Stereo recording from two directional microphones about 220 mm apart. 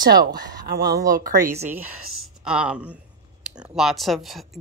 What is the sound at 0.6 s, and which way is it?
Speech, 45° right (ahead or behind).